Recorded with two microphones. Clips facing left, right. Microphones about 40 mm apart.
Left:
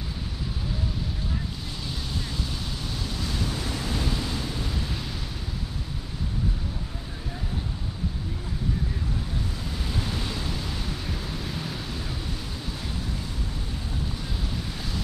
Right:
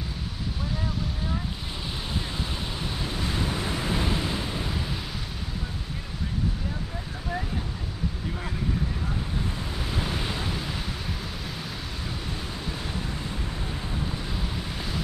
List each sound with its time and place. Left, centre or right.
2.8 s waves: right
9.8 s waves: centre
11.4 s a sound: centre